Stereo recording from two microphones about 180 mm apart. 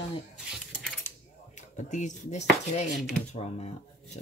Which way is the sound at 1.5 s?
45° left (ahead or behind).